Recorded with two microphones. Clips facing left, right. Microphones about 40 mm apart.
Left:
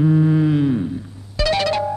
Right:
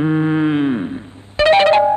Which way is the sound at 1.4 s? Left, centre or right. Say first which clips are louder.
Right 8 dB; right.